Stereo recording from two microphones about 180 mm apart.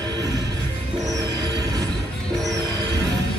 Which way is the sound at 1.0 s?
20° right (ahead or behind).